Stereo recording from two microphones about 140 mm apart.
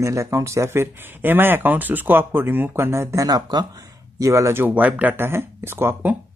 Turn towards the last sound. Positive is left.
turn(degrees=-15)  # may be behind; listen again after turning